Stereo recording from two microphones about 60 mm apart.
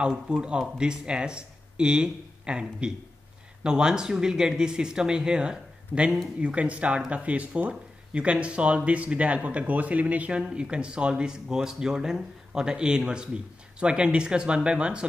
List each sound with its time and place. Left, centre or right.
0.3 s speech: centre